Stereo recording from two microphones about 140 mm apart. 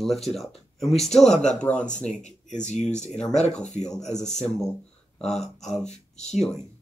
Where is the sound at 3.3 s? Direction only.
55° left (ahead or behind).